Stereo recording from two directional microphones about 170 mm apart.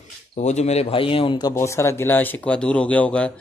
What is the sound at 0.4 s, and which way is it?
Speech, 45° left (ahead or behind).